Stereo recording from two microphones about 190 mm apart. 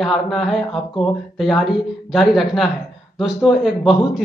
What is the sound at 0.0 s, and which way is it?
A man's voice, centre (ahead or behind).